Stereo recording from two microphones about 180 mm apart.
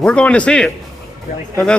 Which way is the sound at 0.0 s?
5° left (ahead or behind).